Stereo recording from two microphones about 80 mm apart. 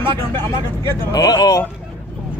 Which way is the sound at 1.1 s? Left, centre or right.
Left.